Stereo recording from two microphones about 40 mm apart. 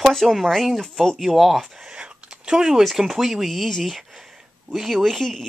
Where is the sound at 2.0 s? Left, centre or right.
Centre.